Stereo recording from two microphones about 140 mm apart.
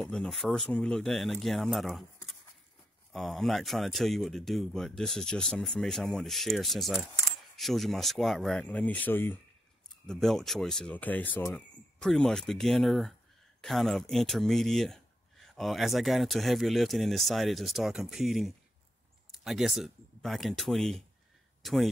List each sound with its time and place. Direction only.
0.0 s speech: 5° left (ahead or behind)
10.0 s speech: centre (ahead or behind)